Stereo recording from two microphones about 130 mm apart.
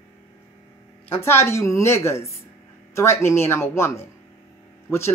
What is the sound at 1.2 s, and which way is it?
Speech, 20° left (ahead or behind).